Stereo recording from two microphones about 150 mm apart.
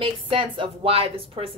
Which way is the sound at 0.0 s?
35° right (ahead or behind).